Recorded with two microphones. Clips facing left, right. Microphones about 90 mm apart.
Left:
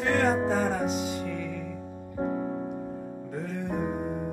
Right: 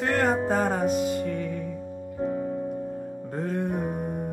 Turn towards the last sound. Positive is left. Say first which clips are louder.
# right 5 dB
turn(degrees=-50)  # may be behind; listen again after turning